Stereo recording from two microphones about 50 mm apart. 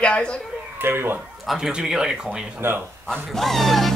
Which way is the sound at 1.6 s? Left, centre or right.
Centre.